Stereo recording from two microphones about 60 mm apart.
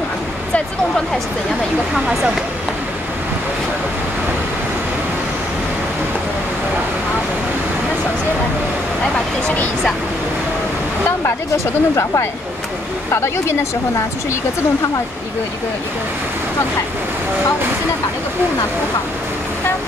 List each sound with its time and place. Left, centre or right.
11.2 s speech: left